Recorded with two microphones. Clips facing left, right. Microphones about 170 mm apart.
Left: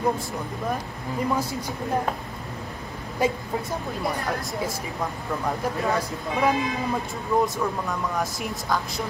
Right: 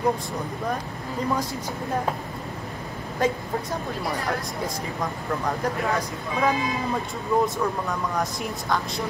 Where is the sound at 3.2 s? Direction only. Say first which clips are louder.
Even; 10° left (ahead or behind).